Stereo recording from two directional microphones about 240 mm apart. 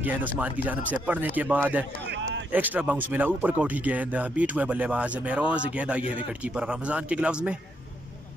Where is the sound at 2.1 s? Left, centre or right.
Right.